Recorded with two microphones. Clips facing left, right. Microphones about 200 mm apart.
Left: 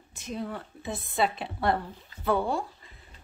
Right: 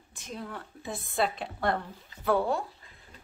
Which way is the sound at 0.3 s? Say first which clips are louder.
Left 5 dB; centre (ahead or behind).